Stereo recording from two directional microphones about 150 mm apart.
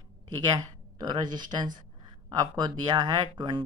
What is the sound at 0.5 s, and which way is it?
Speech, 30° right (ahead or behind).